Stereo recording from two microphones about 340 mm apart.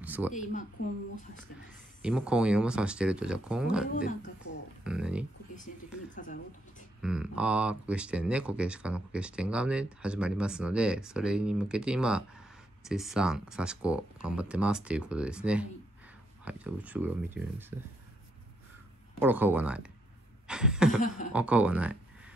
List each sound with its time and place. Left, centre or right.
0.0 s a sound: centre
0.3 s speech: left
2.0 s speech: centre
6.1 s speech: left
7.0 s speech: centre
19.2 s speech: centre